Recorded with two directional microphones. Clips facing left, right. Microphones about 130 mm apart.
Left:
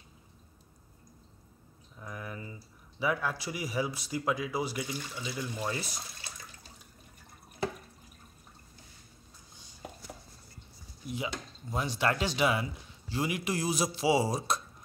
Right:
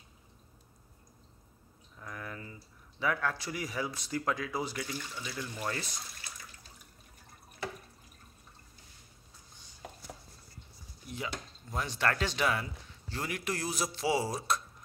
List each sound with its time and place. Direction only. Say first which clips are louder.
2.0 s speech: left 2 dB; 15° left (ahead or behind)
11.7 s speech: left 2 dB; 15° left (ahead or behind)